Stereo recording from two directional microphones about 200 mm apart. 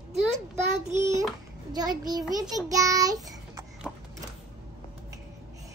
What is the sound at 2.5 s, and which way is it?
Speech, 15° right (ahead or behind).